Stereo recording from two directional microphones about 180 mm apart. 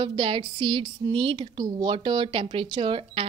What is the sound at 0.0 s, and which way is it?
A woman's voice, 25° right (ahead or behind).